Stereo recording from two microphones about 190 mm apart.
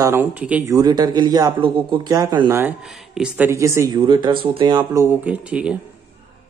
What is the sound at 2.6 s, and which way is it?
A man's voice, 5° right (ahead or behind).